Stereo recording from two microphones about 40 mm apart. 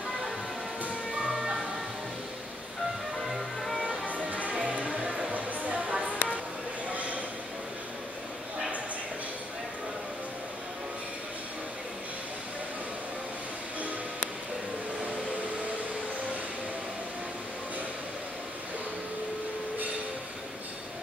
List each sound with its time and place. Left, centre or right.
3.3 s music: centre
4.1 s music: right
5.3 s a sound: right